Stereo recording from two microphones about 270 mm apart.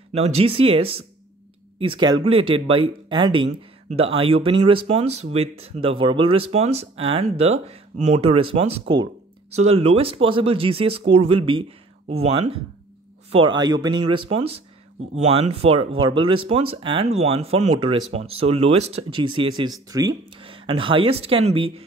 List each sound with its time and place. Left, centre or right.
0.1 s speech: right